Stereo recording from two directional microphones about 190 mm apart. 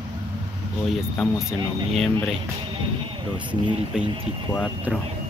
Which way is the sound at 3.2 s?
25° right (ahead or behind).